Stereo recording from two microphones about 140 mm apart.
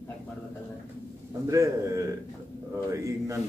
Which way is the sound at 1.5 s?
20° right (ahead or behind).